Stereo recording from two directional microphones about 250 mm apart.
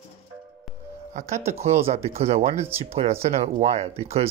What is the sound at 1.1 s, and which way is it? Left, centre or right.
Speech, right.